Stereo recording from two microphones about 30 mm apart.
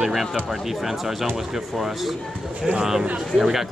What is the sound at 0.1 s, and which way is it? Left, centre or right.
Speech, centre.